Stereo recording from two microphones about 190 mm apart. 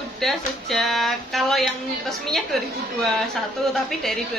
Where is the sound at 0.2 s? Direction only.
Centre (ahead or behind).